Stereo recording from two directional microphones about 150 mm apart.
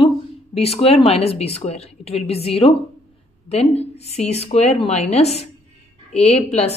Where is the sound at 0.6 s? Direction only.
40° left (ahead or behind).